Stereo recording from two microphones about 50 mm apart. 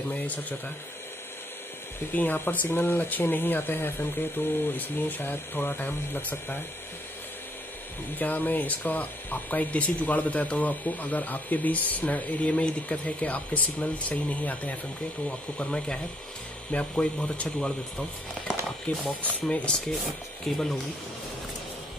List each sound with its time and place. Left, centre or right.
2.1 s speech: left
8.2 s speech: left
15.2 s speech: left
19.0 s speech: left
20.4 s speech: centre